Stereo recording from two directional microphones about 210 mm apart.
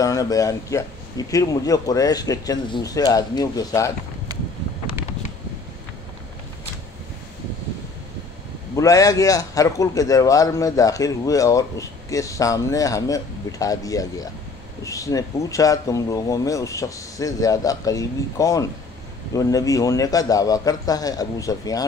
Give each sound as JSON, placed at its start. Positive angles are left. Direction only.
{"t": 0.0, "sound": "a man's voice", "side_deg": 15}
{"t": 8.7, "sound": "a man's voice", "side_deg": 15}